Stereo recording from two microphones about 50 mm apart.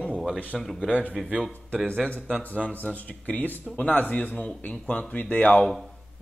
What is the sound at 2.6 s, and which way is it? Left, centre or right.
Speech, left.